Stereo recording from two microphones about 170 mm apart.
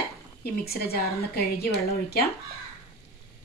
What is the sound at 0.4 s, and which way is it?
A woman's voice, 65° left (ahead or behind).